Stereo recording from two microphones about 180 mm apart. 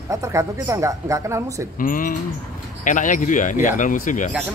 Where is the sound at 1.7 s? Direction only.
50° left (ahead or behind).